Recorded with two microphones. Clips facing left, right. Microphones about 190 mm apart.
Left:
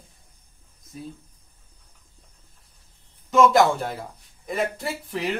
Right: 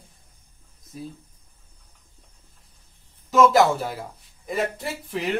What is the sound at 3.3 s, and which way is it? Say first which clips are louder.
Speech: even; centre (ahead or behind).